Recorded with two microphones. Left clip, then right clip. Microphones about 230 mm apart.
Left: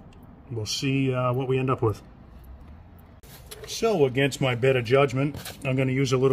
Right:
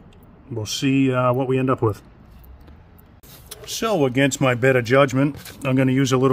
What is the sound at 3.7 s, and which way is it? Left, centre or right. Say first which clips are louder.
Speech: right 2 dB; right.